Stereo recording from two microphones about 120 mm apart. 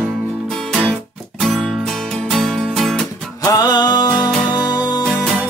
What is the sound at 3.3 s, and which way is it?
Music, 30° left (ahead or behind).